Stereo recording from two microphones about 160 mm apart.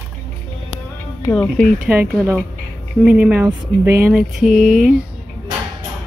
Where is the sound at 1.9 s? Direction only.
10° right (ahead or behind).